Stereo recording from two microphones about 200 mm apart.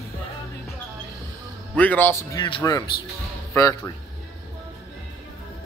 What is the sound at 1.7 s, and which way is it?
Speech, 10° left (ahead or behind).